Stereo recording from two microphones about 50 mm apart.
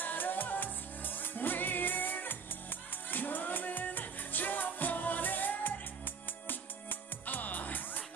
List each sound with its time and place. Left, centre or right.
0.0 s music: left